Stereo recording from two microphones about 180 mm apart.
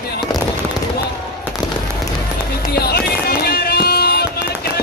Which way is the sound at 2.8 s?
60° left (ahead or behind).